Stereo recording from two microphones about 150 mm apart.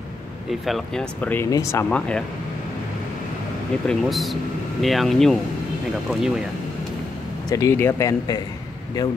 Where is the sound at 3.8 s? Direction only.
Centre (ahead or behind).